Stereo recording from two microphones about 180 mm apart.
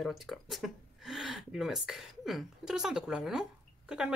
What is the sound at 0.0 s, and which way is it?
Speech, centre (ahead or behind).